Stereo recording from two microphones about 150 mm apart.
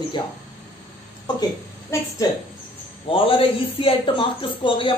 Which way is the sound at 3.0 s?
35° left (ahead or behind).